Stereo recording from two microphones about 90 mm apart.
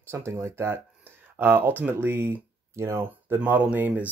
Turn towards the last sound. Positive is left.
turn(degrees=-15)  # may be behind; listen again after turning